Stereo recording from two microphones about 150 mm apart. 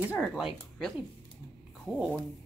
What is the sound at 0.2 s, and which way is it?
Speech, 5° right (ahead or behind).